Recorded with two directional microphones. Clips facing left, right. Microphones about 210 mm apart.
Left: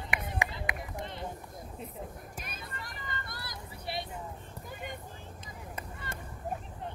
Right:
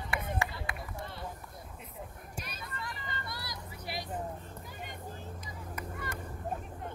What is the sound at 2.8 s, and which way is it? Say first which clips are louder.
Vehicle: right 3 dB; 45° left (ahead or behind).